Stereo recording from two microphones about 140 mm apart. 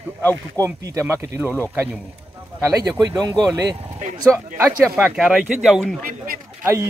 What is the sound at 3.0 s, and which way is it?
Speech, 25° right (ahead or behind).